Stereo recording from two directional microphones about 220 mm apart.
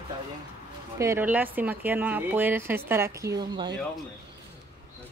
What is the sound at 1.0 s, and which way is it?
Speech, 10° right (ahead or behind).